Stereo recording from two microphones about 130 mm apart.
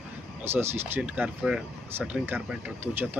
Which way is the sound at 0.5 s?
15° right (ahead or behind).